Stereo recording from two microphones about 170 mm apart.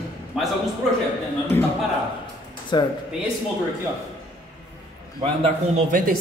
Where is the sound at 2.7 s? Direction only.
25° left (ahead or behind).